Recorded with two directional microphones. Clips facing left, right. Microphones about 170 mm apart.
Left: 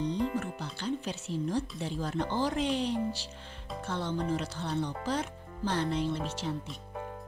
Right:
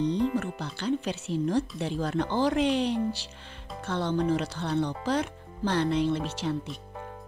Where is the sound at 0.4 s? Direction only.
70° right (ahead or behind).